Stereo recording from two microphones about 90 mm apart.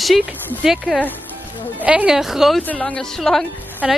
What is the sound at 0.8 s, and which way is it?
Speech, 15° left (ahead or behind).